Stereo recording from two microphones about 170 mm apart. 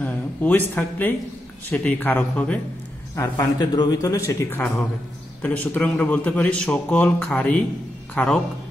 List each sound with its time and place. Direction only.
0.0 s a man's voice: 10° left (ahead or behind)
3.2 s a man's voice: 20° left (ahead or behind)